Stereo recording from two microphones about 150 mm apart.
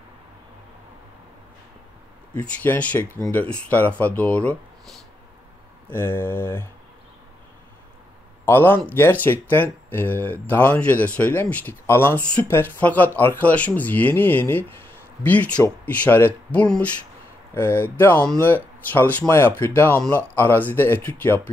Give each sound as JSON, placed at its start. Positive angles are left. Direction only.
{"t": 2.3, "sound": "speech", "side_deg": 10}
{"t": 8.5, "sound": "speech", "side_deg": 15}